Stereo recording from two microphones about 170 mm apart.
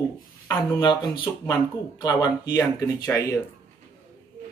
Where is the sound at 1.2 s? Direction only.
25° left (ahead or behind).